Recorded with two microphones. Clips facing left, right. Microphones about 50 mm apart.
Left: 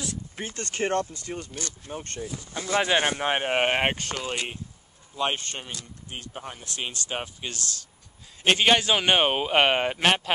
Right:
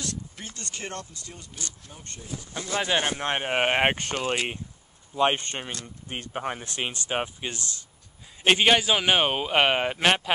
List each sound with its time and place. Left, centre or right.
0.4 s speech: left
1.4 s speech: left
2.6 s speech: centre
3.8 s speech: right
5.7 s speech: right
8.5 s a man's voice: centre